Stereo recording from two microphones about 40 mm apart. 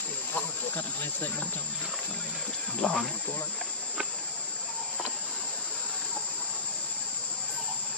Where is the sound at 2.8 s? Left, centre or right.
Centre.